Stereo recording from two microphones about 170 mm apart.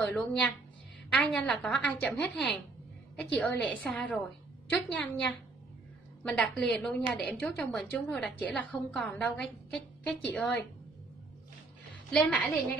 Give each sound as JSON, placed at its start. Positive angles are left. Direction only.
{"t": 0.1, "sound": "a woman's voice", "side_deg": 5}
{"t": 6.2, "sound": "a woman's voice", "side_deg": 5}
{"t": 12.1, "sound": "a woman's voice", "side_deg": 5}